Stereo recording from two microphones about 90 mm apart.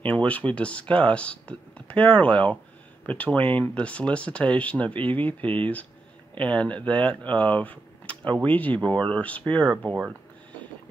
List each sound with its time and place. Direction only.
0.0 s speech: 15° left (ahead or behind)